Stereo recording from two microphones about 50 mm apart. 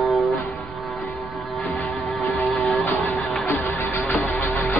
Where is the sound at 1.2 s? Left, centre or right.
Centre.